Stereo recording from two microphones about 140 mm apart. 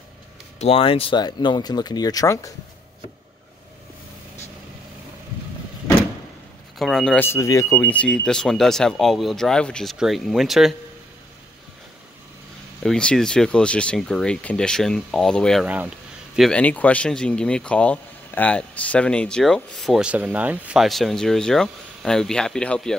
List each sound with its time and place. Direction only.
0.6 s speech: 45° left (ahead or behind); by 2.5 s 20° left (ahead or behind)
6.8 s speech: 5° left (ahead or behind)
7.2 s speech: 20° left (ahead or behind)
7.9 s speech: 10° left (ahead or behind)
12.8 s speech: 5° left (ahead or behind)
15.6 s speech: 10° right (ahead or behind)
16.3 s speech: 5° left (ahead or behind)